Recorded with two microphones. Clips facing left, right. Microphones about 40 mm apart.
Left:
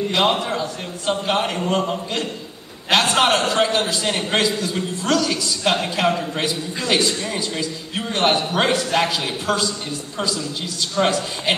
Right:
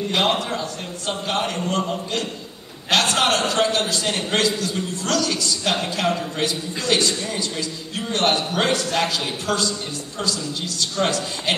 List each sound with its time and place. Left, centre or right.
0.1 s a man's voice: centre